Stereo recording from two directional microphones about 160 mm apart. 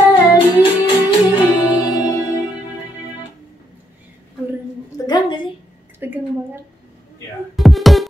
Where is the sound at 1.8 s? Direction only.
20° left (ahead or behind).